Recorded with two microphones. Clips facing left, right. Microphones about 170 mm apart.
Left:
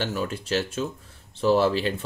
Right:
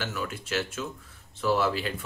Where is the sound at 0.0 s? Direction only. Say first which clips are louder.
Left 5 dB; 35° left (ahead or behind).